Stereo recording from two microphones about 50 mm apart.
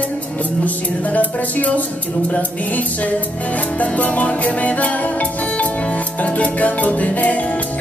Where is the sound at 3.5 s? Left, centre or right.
Left.